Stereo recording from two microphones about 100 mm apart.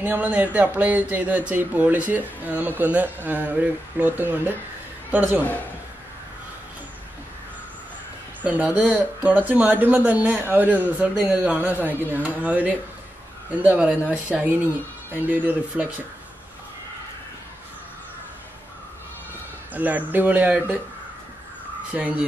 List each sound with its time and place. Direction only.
0.0 s speech: 15° right (ahead or behind)
8.4 s speech: 15° right (ahead or behind)
19.7 s speech: 15° right (ahead or behind)
21.9 s speech: 15° right (ahead or behind)